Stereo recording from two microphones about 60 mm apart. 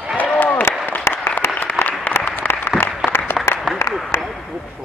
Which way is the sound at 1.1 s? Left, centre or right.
Left.